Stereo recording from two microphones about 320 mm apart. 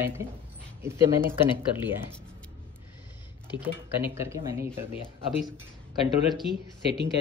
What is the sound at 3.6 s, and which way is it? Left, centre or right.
A man's voice, centre.